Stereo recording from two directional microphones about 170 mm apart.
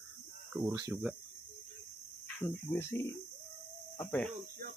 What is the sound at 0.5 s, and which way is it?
Speech, 15° right (ahead or behind).